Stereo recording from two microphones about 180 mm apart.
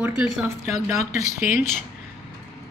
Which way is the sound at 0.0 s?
5° right (ahead or behind).